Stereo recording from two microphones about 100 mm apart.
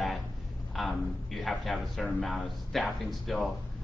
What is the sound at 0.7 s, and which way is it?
A man's voice, centre (ahead or behind).